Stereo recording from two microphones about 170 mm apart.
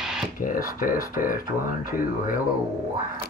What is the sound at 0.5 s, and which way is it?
Speech, 55° left (ahead or behind).